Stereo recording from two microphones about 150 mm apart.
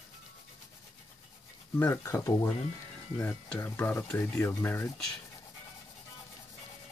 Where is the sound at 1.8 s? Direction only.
20° left (ahead or behind).